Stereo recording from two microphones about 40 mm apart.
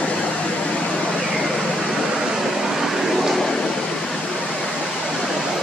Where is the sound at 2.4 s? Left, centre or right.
Centre.